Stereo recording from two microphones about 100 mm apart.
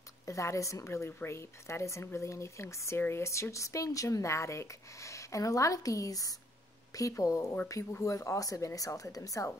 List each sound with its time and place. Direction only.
0.2 s a woman's voice: 30° left (ahead or behind)